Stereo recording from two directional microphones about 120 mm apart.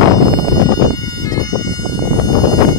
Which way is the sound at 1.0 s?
30° left (ahead or behind).